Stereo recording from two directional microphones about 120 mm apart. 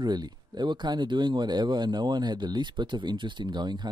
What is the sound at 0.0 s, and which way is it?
Speech, 35° right (ahead or behind).